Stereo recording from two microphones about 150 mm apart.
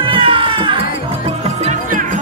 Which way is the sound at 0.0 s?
35° right (ahead or behind).